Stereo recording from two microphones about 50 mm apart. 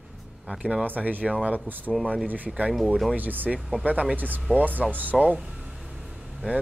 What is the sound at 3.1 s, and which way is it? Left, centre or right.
Speech, right.